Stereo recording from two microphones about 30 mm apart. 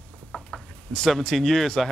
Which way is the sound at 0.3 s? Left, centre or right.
Centre.